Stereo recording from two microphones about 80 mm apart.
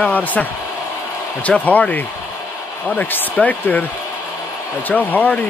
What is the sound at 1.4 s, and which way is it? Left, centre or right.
Speech, centre.